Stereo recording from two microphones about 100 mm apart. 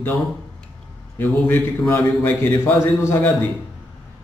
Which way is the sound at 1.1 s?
20° left (ahead or behind).